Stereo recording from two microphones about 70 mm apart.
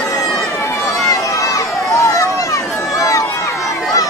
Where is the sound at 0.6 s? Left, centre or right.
Left.